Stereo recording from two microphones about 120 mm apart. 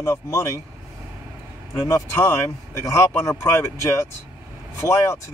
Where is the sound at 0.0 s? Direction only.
25° left (ahead or behind).